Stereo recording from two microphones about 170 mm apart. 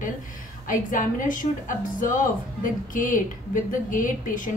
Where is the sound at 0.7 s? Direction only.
50° left (ahead or behind).